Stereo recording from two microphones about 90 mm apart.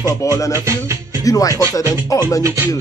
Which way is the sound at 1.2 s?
40° left (ahead or behind).